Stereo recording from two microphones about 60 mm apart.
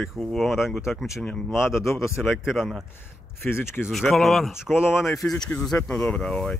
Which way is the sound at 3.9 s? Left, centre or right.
Centre.